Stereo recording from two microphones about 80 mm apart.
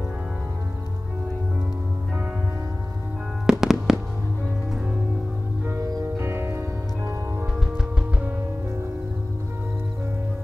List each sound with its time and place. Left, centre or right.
3.4 s music: centre
5.8 s music: right
6.1 s music: right